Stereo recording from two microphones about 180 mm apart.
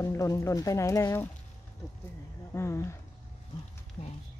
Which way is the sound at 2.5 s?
15° left (ahead or behind).